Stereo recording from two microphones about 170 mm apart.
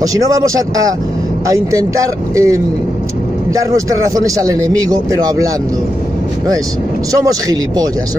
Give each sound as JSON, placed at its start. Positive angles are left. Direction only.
{"t": 0.0, "sound": "a man's voice", "side_deg": -20}
{"t": 7.1, "sound": "a man's voice", "side_deg": -20}